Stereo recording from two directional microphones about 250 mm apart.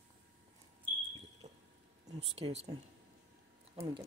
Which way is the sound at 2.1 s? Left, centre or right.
Right.